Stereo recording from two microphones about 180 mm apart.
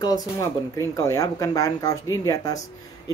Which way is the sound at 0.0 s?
20° left (ahead or behind).